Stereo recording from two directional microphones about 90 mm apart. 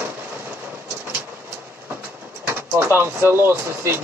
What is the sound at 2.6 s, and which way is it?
Speech, 25° right (ahead or behind).